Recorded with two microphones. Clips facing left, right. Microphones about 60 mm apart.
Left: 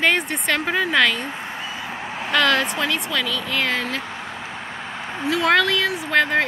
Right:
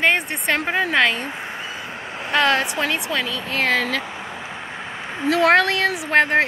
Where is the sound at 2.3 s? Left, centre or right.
Right.